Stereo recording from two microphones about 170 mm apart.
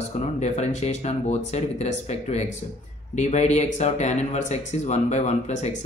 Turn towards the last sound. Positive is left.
turn(degrees=45)  # may be behind; listen again after turning